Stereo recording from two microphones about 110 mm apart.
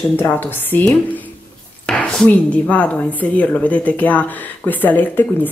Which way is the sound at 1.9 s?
15° left (ahead or behind).